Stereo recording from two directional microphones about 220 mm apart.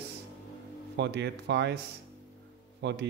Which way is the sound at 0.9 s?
50° right (ahead or behind).